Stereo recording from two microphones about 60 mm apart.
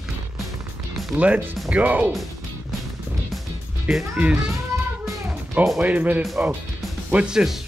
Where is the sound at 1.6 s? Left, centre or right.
Right.